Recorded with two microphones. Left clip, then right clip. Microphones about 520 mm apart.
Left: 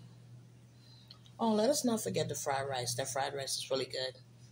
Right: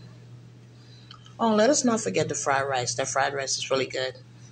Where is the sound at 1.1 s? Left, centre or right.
Left.